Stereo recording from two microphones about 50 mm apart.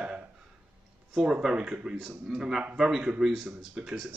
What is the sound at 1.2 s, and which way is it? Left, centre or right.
Speech, centre.